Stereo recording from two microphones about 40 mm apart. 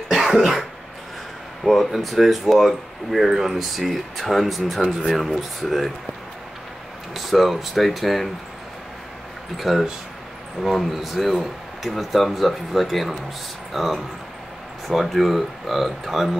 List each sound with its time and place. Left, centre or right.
0.1 s cough: centre
1.6 s speech: centre
7.2 s speech: centre
9.6 s speech: centre